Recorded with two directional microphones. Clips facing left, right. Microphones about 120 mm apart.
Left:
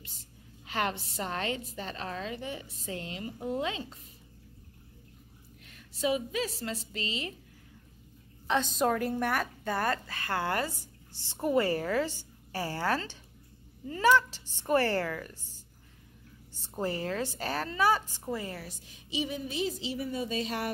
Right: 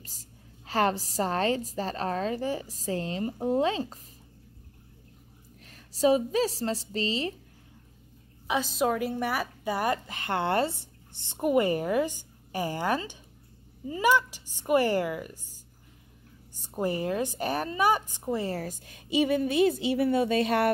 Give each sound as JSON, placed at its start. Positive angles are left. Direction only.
{"t": 0.0, "sound": "a woman's voice", "side_deg": -40}
{"t": 5.6, "sound": "a woman's voice", "side_deg": -35}
{"t": 8.5, "sound": "a woman's voice", "side_deg": -5}
{"t": 16.7, "sound": "a woman's voice", "side_deg": -20}
{"t": 18.4, "sound": "a woman's voice", "side_deg": -40}